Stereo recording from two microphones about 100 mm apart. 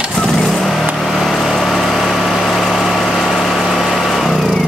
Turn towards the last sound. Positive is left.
turn(degrees=0)  # may be behind; listen again after turning